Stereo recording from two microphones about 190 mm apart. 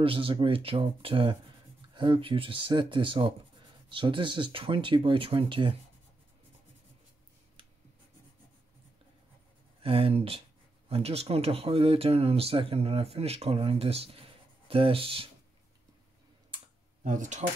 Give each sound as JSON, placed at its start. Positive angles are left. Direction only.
{"t": 0.0, "sound": "speech", "side_deg": -30}
{"t": 9.8, "sound": "speech", "side_deg": -30}
{"t": 17.0, "sound": "speech", "side_deg": -40}